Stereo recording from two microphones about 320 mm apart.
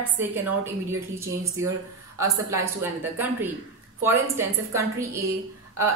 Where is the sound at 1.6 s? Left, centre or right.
Centre.